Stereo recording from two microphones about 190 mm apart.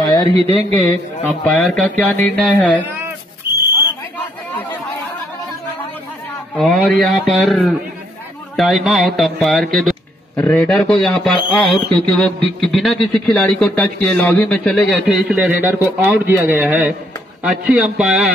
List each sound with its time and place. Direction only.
0.0 s a sound: 20° left (ahead or behind)
0.7 s speech: 10° left (ahead or behind)
4.5 s chatter: 10° left (ahead or behind)
6.5 s a man's voice: 5° left (ahead or behind)